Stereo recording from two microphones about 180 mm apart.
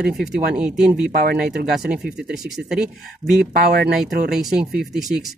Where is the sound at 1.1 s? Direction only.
60° right (ahead or behind).